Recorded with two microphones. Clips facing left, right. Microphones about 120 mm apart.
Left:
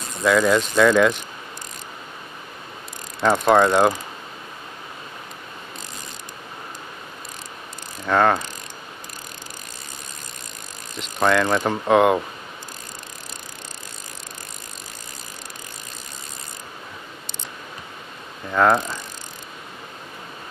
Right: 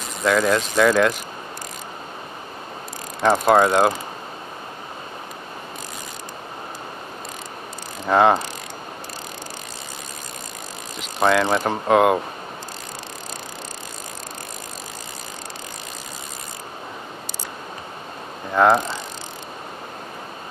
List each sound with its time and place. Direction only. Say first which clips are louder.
0.2 s speech: left 1 dB; centre (ahead or behind)
3.2 s speech: even; 10° right (ahead or behind)
8.1 s mechanisms: right 2 dB; 15° right (ahead or behind)
11.0 s speech: right 1 dB; 5° right (ahead or behind)
18.5 s mechanisms: right 2 dB; 10° right (ahead or behind)